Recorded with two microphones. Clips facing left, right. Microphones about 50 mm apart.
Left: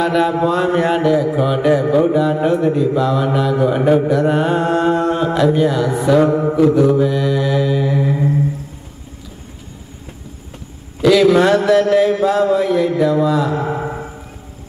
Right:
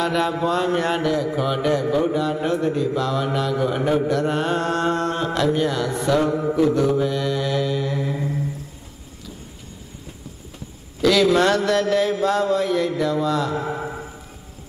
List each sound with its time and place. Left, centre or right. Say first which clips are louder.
0.0 s a sound: left 6 dB; centre
0.7 s mantra: left 7 dB; centre
6.2 s mantra: left 6 dB; left
6.7 s mantra: left 6 dB; centre
8.0 s humming: left 8 dB; left
11.0 s a man's voice: left 5 dB; centre
11.3 s mantra: left 6 dB; centre
13.7 s music: left 6 dB; left